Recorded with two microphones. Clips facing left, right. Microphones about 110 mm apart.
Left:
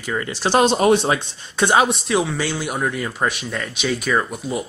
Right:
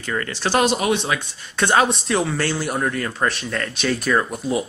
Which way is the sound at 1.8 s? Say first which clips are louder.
Left 1 dB; 5° left (ahead or behind).